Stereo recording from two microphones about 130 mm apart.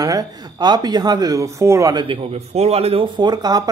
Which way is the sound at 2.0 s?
45° right (ahead or behind).